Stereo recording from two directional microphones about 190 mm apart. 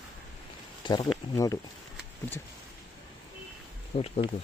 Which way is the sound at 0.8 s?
25° left (ahead or behind).